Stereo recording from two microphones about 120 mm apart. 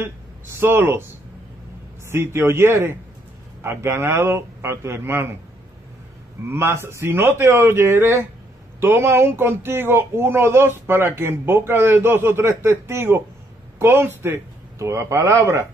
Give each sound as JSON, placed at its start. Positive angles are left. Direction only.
{"t": 0.6, "sound": "speech", "side_deg": -20}
{"t": 2.0, "sound": "speech", "side_deg": -20}
{"t": 6.5, "sound": "a man's voice", "side_deg": -20}